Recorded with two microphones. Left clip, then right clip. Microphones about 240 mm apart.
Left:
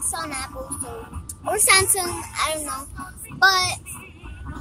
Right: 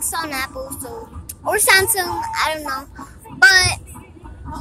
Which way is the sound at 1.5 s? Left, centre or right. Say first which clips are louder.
Right 4 dB; centre.